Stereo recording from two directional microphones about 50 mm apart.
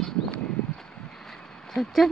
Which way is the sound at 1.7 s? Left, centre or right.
Centre.